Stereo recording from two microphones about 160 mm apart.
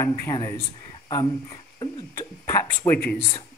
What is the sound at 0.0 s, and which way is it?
Speech, 20° left (ahead or behind).